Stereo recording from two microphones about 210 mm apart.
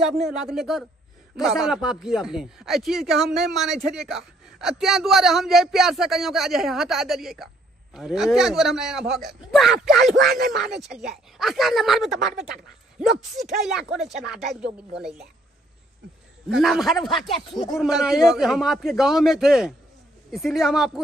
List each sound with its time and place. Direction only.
0.0 s speech: 5° right (ahead or behind)
10.3 s speech: 45° right (ahead or behind)
10.6 s speech: centre (ahead or behind)
13.7 s speech: centre (ahead or behind)
16.6 s speech: centre (ahead or behind)